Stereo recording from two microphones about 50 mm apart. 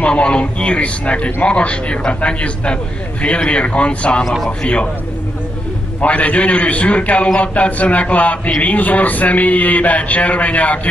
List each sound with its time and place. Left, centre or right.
0.0 s a man's voice: left
4.2 s a man's voice: centre
4.5 s a man's voice: left
5.9 s a man's voice: left
8.5 s a sound: left